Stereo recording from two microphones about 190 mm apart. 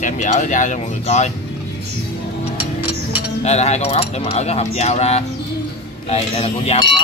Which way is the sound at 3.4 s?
35° left (ahead or behind).